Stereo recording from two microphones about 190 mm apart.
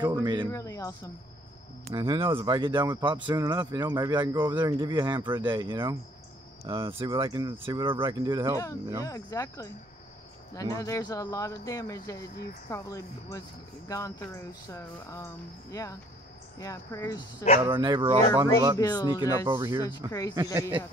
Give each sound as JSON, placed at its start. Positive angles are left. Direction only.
{"t": 0.0, "sound": "speech", "side_deg": -25}
{"t": 0.5, "sound": "speech", "side_deg": 15}
{"t": 1.9, "sound": "speech", "side_deg": -25}
{"t": 9.0, "sound": "speech", "side_deg": 20}
{"t": 17.6, "sound": "speech", "side_deg": -25}
{"t": 18.8, "sound": "speech", "side_deg": 20}
{"t": 19.4, "sound": "speech", "side_deg": -25}
{"t": 20.1, "sound": "speech", "side_deg": 15}